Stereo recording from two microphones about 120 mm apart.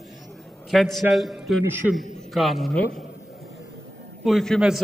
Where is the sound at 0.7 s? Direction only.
Centre (ahead or behind).